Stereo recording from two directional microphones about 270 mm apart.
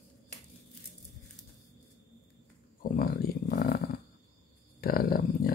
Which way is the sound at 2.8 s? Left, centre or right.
Left.